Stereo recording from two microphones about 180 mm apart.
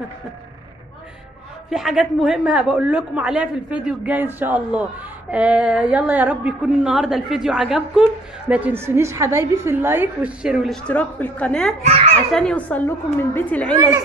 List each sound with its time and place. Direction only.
1.7 s a woman's voice: centre (ahead or behind)
11.8 s a child's voice: 35° right (ahead or behind)
12.1 s a woman's voice: 5° left (ahead or behind)